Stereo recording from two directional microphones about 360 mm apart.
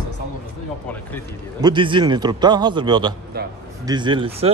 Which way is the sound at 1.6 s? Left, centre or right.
Centre.